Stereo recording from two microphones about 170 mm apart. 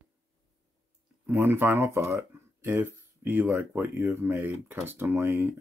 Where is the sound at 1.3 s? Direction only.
10° right (ahead or behind).